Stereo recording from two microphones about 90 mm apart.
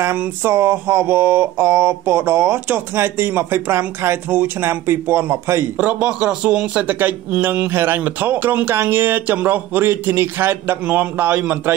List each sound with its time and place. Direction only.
0.0 s a man's voice: 25° right (ahead or behind)
5.8 s a man's voice: 15° right (ahead or behind)